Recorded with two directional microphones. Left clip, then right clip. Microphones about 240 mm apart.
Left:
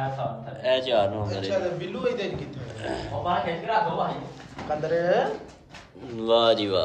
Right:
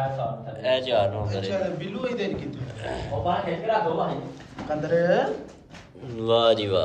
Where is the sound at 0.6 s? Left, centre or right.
Centre.